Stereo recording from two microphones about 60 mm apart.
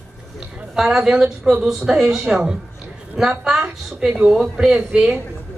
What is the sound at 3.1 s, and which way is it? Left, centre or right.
Speech, centre.